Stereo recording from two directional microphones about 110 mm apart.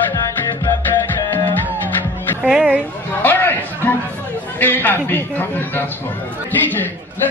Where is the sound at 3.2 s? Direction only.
20° left (ahead or behind).